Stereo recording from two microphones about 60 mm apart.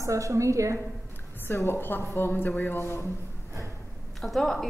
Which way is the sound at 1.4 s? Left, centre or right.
Left.